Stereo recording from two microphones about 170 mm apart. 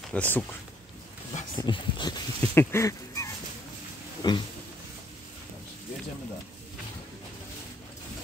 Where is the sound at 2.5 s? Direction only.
15° left (ahead or behind).